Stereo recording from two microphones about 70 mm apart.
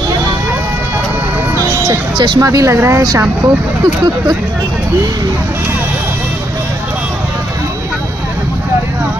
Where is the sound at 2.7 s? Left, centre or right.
Right.